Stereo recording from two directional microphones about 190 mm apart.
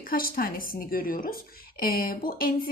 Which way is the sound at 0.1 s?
50° left (ahead or behind).